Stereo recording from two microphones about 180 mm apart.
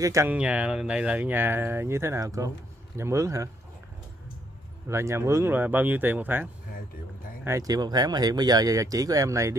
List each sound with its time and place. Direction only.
0.0 s speech: 15° right (ahead or behind)
4.8 s speech: 15° right (ahead or behind)